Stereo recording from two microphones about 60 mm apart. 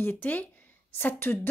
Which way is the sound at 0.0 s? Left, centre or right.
Left.